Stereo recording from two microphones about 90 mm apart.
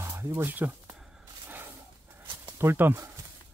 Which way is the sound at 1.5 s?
25° right (ahead or behind).